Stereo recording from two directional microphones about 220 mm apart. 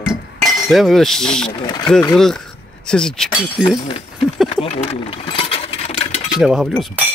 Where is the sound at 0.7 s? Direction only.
Centre (ahead or behind).